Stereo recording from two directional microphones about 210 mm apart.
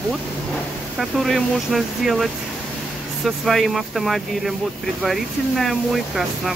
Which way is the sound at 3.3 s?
Centre (ahead or behind).